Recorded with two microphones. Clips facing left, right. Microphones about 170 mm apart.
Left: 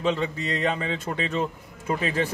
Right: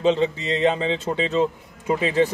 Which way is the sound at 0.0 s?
20° right (ahead or behind).